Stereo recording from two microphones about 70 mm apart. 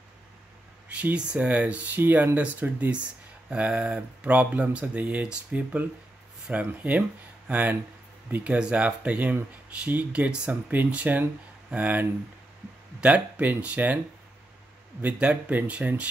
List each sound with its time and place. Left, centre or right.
0.8 s speech: centre
15.0 s speech: right